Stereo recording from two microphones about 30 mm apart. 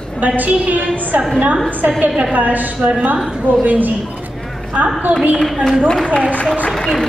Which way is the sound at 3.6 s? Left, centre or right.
Right.